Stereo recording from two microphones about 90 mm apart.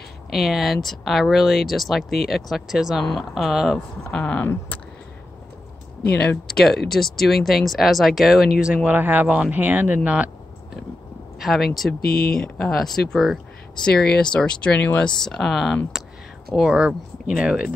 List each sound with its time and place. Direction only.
0.3 s speech: 5° right (ahead or behind)
6.3 s speech: 5° left (ahead or behind); by 10.3 s 15° right (ahead or behind)
11.3 s speech: centre (ahead or behind)